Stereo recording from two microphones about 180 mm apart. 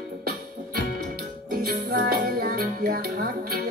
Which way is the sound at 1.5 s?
55° right (ahead or behind).